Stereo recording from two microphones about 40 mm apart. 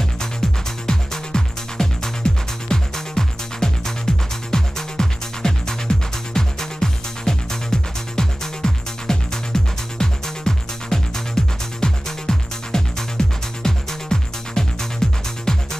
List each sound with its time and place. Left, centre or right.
0.8 s music: centre